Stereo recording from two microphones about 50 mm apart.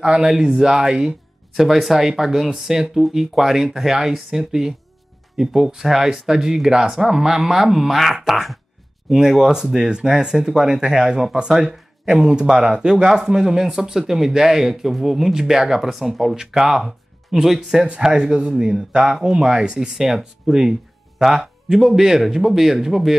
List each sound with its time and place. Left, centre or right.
0.0 s speech: centre
1.5 s speech: centre
18.0 s speech: centre